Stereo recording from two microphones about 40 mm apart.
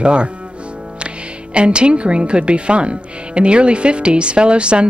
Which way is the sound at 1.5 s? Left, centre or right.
Right.